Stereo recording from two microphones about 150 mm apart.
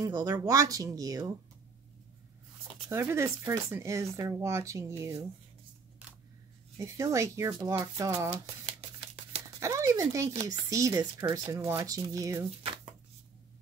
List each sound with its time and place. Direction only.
0.0 s speech: 25° right (ahead or behind)
2.9 s speech: 15° right (ahead or behind)
6.0 s scissors: 10° right (ahead or behind)
6.8 s speech: 20° right (ahead or behind)
9.6 s a sound: 20° right (ahead or behind)
10.4 s speech: 20° right (ahead or behind)